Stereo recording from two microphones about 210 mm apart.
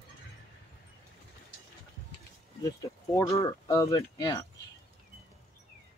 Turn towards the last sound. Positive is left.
turn(degrees=15)  # may be behind; listen again after turning